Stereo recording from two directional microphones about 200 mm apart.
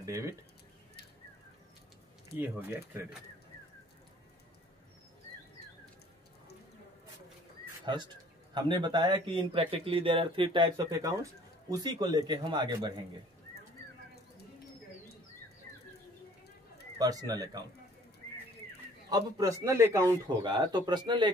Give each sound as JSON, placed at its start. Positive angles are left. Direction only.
{"t": 0.0, "sound": "speech", "side_deg": -15}
{"t": 2.3, "sound": "speech", "side_deg": -10}
{"t": 7.8, "sound": "speech", "side_deg": -20}
{"t": 17.0, "sound": "speech", "side_deg": -20}
{"t": 19.0, "sound": "speech", "side_deg": -20}